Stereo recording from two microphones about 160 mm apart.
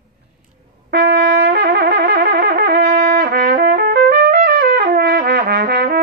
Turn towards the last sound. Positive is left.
turn(degrees=-75)  # may be behind; listen again after turning